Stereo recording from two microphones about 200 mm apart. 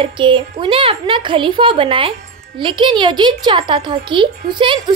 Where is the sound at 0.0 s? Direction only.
25° right (ahead or behind).